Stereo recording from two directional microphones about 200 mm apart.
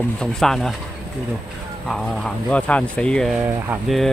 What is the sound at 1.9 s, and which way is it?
Speech, centre (ahead or behind).